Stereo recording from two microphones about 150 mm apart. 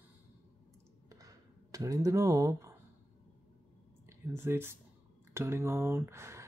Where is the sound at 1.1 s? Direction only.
25° right (ahead or behind).